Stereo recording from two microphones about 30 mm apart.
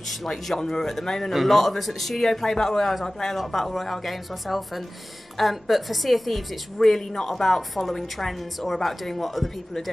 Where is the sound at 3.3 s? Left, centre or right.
Centre.